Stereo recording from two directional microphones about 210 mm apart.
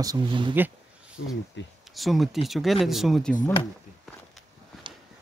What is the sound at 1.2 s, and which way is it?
Speech, 60° left (ahead or behind).